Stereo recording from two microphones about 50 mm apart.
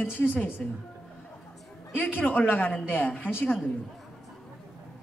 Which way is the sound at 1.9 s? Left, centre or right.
Left.